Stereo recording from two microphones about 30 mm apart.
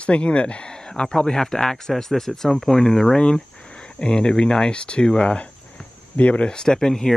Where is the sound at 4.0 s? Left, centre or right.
Left.